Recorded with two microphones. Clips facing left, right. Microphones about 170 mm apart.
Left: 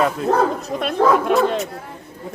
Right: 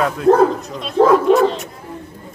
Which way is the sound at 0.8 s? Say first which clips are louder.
Right 4 dB; 60° left (ahead or behind).